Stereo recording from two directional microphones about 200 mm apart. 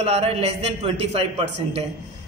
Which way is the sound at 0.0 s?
30° right (ahead or behind).